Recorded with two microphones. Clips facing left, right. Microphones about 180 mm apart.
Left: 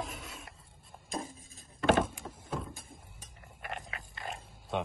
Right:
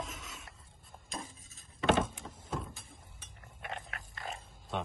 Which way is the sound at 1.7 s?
Centre (ahead or behind).